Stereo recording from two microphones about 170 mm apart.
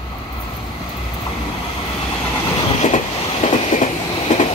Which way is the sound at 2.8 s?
40° left (ahead or behind).